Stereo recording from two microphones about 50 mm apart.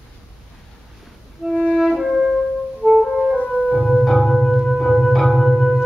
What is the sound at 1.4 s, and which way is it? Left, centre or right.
Music, centre.